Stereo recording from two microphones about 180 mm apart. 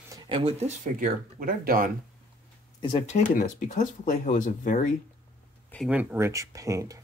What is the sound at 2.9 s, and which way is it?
Speech, 40° left (ahead or behind).